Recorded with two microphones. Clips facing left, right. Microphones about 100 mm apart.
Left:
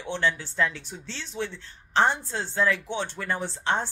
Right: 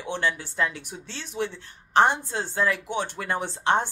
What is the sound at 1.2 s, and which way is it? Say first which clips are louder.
Speech: right 3 dB; 15° right (ahead or behind).